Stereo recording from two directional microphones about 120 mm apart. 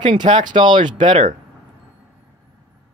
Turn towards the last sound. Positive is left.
turn(degrees=-40)  # may be behind; listen again after turning